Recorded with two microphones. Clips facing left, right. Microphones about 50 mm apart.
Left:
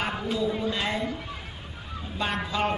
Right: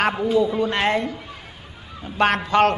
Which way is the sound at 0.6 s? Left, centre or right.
Right.